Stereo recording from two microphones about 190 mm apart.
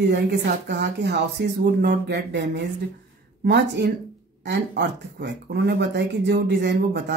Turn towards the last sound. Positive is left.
turn(degrees=-60)  # may be behind; listen again after turning